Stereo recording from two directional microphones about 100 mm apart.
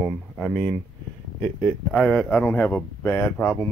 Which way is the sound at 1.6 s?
5° left (ahead or behind).